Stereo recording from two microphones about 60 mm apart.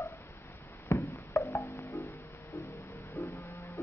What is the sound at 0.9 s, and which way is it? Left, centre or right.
Music, left.